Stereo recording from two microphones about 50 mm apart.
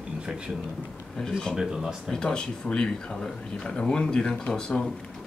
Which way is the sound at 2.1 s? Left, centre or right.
Centre.